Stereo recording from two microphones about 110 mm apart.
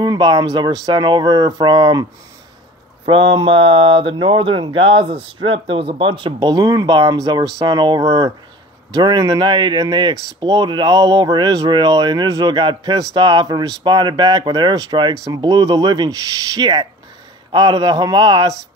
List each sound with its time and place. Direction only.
0.0 s speech: 40° right (ahead or behind)
3.1 s speech: 50° right (ahead or behind)